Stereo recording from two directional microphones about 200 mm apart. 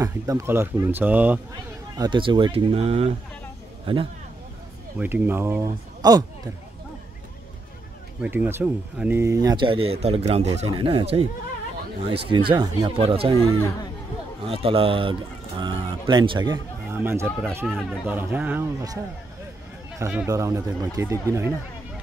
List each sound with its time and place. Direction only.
0.0 s speech: 15° right (ahead or behind)
2.0 s speech: 25° right (ahead or behind)
4.9 s speech: 10° right (ahead or behind)
8.2 s speech: 10° right (ahead or behind); by 13.4 s 30° right (ahead or behind)
14.4 s speech: 30° right (ahead or behind)
17.0 s speech: 10° right (ahead or behind)
20.2 s speech: 15° right (ahead or behind)